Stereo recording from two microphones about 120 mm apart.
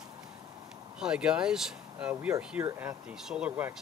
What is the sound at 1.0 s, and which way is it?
Speech, 10° right (ahead or behind).